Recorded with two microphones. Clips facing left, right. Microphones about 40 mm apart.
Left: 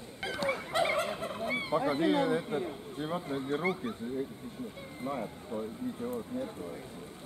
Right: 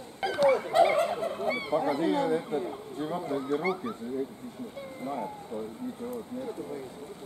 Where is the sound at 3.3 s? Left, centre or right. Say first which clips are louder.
Right 4 dB; left.